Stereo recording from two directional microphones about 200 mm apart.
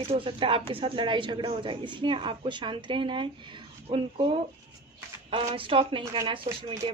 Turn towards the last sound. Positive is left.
turn(degrees=-25)  # may be behind; listen again after turning